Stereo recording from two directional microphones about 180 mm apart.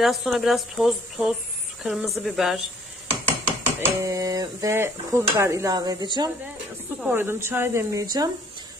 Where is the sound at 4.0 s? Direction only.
20° right (ahead or behind).